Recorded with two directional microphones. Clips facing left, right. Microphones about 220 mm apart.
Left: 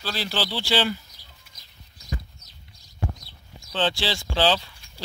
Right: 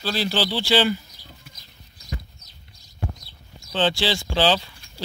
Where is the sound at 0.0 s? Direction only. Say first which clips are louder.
Right 5 dB; 30° right (ahead or behind).